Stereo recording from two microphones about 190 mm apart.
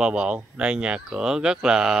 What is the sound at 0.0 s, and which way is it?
Speech, 5° right (ahead or behind).